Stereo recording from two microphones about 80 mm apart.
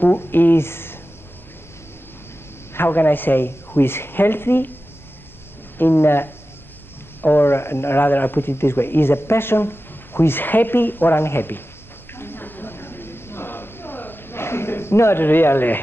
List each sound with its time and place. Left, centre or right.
0.0 s speech: left
2.7 s speech: left
5.8 s speech: left
12.2 s a sound: left